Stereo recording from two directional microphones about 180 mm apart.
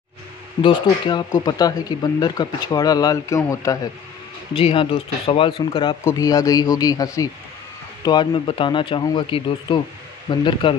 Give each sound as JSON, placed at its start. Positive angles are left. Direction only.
{"t": 0.6, "sound": "speech", "side_deg": 25}
{"t": 4.6, "sound": "speech", "side_deg": 30}